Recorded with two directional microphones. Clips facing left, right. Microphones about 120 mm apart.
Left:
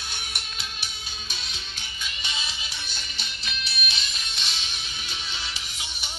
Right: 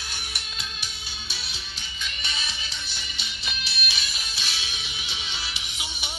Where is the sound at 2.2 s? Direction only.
15° left (ahead or behind).